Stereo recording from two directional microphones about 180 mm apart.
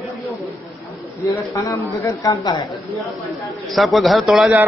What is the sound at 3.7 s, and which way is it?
Speech, centre (ahead or behind).